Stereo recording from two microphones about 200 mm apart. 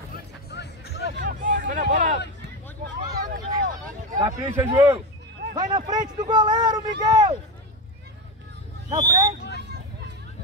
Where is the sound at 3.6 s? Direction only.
45° right (ahead or behind).